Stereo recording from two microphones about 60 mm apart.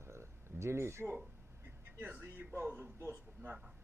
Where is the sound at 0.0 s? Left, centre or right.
Right.